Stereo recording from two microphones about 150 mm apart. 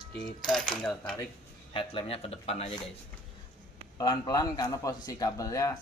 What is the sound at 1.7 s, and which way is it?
Speech, 35° left (ahead or behind).